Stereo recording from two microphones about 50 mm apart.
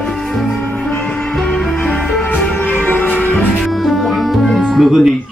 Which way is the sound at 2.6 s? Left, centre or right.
Left.